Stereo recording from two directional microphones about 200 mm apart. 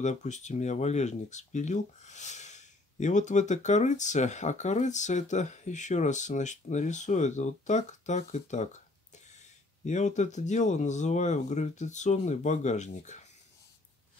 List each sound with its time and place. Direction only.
0.0 s speech: 35° left (ahead or behind)
9.8 s speech: 35° left (ahead or behind)